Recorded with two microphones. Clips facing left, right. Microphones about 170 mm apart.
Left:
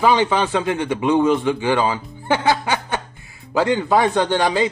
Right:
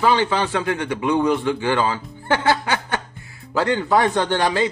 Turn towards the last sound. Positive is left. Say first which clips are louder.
# left 2 dB
turn(degrees=15)  # may be behind; listen again after turning